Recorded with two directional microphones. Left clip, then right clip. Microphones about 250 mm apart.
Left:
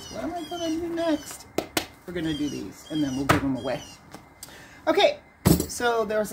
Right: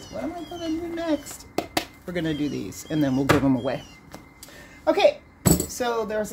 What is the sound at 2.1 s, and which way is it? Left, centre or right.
Speech, right.